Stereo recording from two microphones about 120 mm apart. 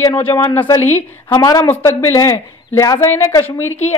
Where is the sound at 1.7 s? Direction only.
20° left (ahead or behind).